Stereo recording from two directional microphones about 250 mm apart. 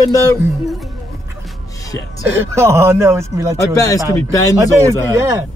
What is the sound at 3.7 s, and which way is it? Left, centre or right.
Speech, centre.